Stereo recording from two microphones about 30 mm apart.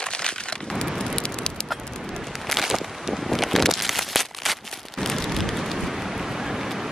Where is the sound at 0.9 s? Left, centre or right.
Left.